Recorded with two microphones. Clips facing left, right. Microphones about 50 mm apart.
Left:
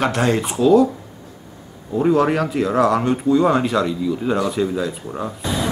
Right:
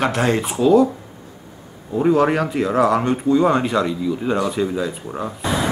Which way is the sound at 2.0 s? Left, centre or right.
Centre.